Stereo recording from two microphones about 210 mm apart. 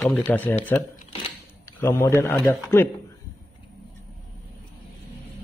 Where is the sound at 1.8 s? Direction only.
10° left (ahead or behind).